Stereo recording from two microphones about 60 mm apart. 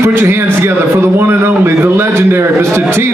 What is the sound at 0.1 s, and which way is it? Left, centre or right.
A man's voice, right.